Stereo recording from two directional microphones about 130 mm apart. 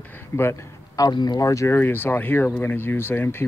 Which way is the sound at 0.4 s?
25° left (ahead or behind).